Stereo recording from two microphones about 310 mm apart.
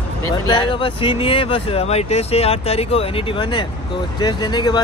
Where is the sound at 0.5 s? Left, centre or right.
Centre.